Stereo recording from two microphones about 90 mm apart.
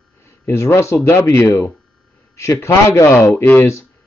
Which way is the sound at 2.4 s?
30° left (ahead or behind).